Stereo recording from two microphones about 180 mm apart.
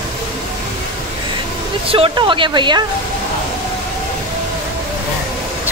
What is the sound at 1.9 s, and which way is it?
Speech, 30° right (ahead or behind).